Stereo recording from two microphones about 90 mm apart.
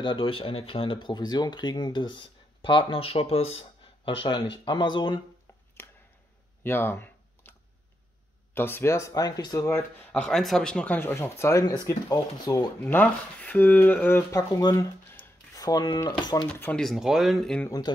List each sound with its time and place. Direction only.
0.0 s speech: 70° left (ahead or behind)
6.6 s computer keyboard: 25° left (ahead or behind)
8.5 s speech: 25° left (ahead or behind)
9.1 s speech: 45° left (ahead or behind)
10.1 s speech: 10° left (ahead or behind)
11.1 s speech: 30° left (ahead or behind)
11.6 s speech: 45° left (ahead or behind)
12.8 s speech: 20° left (ahead or behind)
14.3 s speech: 45° left (ahead or behind)
16.7 s speech: centre (ahead or behind)
17.9 s speech: 55° left (ahead or behind)